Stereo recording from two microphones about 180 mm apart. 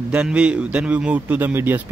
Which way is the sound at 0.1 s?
5° right (ahead or behind).